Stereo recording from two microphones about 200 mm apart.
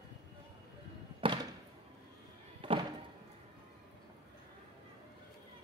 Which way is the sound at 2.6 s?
25° right (ahead or behind).